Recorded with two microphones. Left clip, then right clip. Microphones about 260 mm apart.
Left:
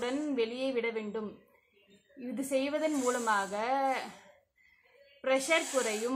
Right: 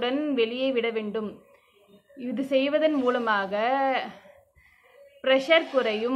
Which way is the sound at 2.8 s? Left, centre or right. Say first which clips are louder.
Right 7 dB; left.